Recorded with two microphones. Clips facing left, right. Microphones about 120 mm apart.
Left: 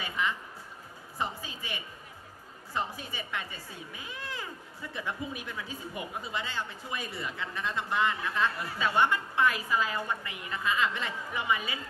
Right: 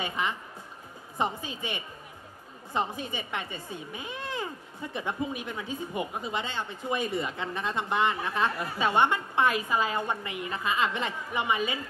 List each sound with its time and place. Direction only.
0.0 s a woman's voice: 20° right (ahead or behind)